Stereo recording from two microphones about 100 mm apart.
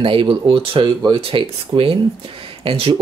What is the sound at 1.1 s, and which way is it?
Speech, 65° right (ahead or behind).